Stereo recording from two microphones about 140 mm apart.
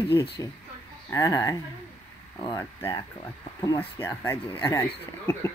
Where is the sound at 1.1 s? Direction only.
25° left (ahead or behind).